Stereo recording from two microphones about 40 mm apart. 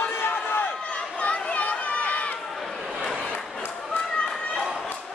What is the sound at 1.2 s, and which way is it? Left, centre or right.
Run, left.